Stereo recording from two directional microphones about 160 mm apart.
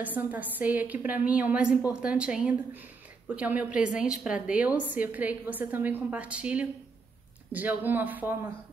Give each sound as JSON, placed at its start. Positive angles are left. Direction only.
{"t": 0.0, "sound": "a woman's voice", "side_deg": -10}